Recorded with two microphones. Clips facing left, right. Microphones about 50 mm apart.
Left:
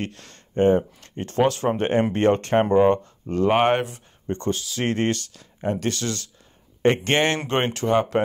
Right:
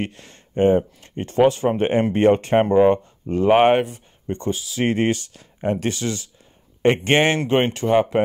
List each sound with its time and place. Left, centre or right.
0.0 s speech: centre
5.3 s speech: right
7.3 s speech: centre